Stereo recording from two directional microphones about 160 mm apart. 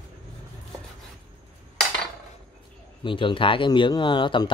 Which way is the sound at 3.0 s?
30° left (ahead or behind).